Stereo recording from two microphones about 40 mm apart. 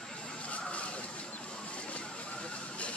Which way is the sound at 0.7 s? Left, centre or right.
Left.